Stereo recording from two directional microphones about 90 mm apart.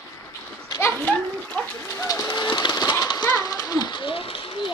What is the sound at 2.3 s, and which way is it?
Train, 55° left (ahead or behind).